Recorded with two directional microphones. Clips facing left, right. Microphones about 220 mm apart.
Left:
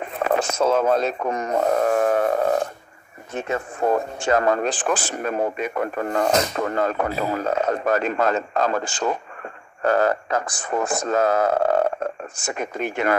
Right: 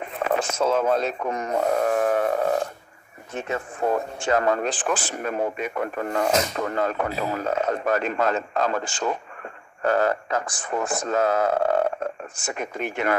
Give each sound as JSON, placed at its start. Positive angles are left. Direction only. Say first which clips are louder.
{"t": 0.2, "sound": "speech", "louder": "left 3 dB", "side_deg": 40}
{"t": 3.4, "sound": "speech", "louder": "left 3 dB", "side_deg": 45}